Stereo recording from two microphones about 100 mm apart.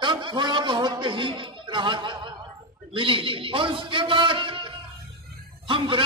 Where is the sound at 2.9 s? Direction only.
65° right (ahead or behind).